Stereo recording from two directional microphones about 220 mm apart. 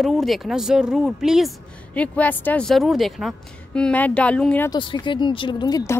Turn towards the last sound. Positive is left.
turn(degrees=15)  # may be behind; listen again after turning